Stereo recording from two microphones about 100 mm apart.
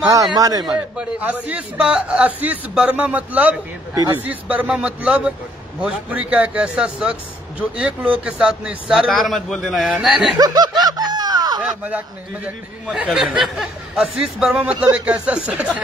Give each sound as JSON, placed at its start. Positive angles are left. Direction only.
{"t": 0.0, "sound": "a man's voice", "side_deg": -35}
{"t": 0.7, "sound": "speech", "side_deg": -15}
{"t": 9.1, "sound": "a man's voice", "side_deg": 0}
{"t": 10.3, "sound": "snicker", "side_deg": -45}
{"t": 12.8, "sound": "speech", "side_deg": -10}